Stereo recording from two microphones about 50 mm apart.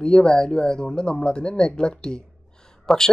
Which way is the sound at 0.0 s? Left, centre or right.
Centre.